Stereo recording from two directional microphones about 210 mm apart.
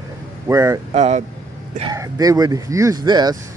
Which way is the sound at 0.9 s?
35° right (ahead or behind).